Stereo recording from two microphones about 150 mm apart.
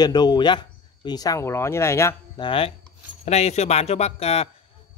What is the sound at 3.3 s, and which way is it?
Speech, 45° left (ahead or behind).